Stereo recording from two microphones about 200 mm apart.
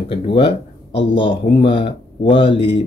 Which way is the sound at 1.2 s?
25° left (ahead or behind).